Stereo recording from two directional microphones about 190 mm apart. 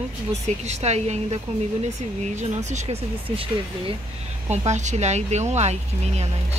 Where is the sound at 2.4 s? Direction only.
35° right (ahead or behind).